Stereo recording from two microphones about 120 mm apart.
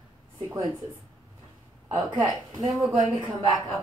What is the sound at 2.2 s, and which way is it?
Speech, 35° right (ahead or behind).